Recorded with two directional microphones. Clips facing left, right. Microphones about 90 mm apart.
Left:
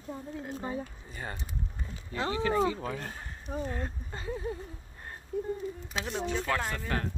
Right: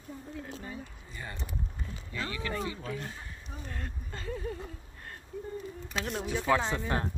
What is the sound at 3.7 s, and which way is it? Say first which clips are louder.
Speech: left 5 dB; 20° left (ahead or behind).